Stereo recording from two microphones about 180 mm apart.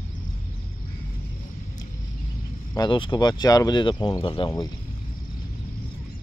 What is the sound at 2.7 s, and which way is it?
Speech, 25° left (ahead or behind).